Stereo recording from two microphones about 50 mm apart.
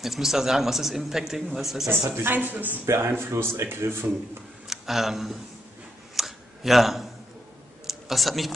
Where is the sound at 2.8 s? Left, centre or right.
Right.